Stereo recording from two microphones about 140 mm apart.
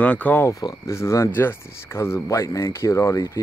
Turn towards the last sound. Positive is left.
turn(degrees=20)  # may be behind; listen again after turning